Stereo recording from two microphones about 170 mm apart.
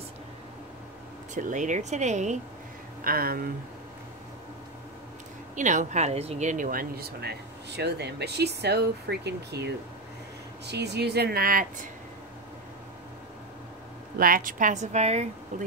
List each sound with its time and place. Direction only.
1.3 s a woman's voice: 50° right (ahead or behind)
3.0 s speech: 60° right (ahead or behind)
5.6 s speech: 45° right (ahead or behind)
14.1 s a woman's voice: 55° right (ahead or behind); by 15.2 s 40° right (ahead or behind)